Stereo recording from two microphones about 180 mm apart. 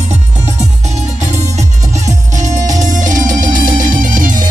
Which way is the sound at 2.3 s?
45° right (ahead or behind).